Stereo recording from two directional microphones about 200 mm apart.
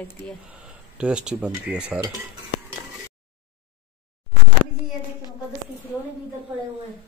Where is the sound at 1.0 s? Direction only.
5° right (ahead or behind).